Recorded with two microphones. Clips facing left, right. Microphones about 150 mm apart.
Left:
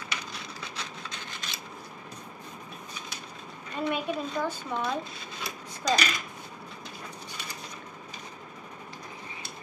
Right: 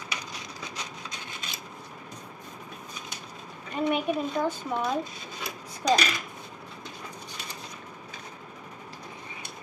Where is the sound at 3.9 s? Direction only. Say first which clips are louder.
Right 3 dB; 20° right (ahead or behind).